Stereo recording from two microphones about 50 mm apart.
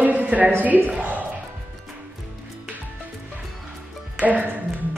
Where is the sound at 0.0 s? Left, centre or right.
Right.